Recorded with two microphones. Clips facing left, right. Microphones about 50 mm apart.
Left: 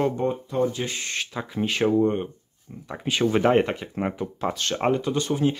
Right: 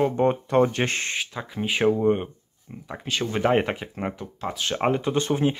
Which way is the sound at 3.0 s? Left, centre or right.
Centre.